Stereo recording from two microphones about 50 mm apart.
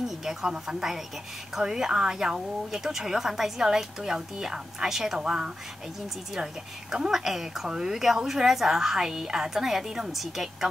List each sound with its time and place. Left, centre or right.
0.0 s a woman's voice: centre
5.2 s a woman's voice: centre